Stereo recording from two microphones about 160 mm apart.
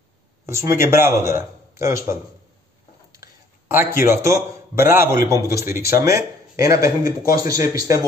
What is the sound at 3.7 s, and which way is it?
A man's voice, 15° right (ahead or behind).